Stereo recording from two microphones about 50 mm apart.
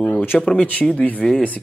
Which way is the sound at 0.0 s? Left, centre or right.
Left.